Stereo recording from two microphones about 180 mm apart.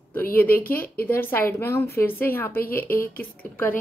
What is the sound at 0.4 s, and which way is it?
A woman's voice, 10° left (ahead or behind).